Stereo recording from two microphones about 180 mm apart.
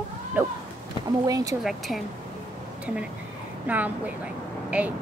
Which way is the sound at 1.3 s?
20° right (ahead or behind).